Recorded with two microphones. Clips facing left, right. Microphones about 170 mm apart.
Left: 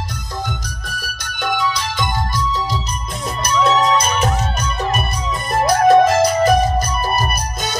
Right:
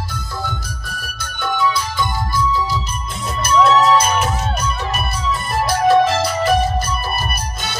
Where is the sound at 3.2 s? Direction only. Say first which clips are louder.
Right 3 dB; 40° left (ahead or behind).